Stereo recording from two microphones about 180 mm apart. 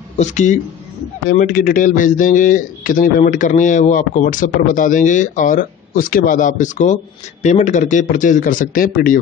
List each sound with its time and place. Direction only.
0.2 s a man's voice: 40° left (ahead or behind)